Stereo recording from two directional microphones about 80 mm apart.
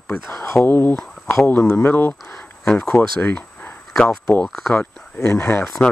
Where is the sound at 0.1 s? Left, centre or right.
Left.